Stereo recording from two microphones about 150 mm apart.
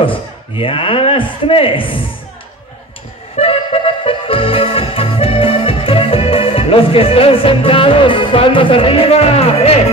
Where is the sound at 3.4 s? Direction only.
40° left (ahead or behind).